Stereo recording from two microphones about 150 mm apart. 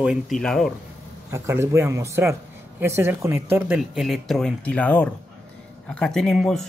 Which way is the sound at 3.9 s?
Centre (ahead or behind).